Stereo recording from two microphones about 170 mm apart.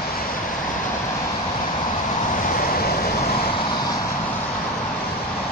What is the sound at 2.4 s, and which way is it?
Vehicle, 60° left (ahead or behind).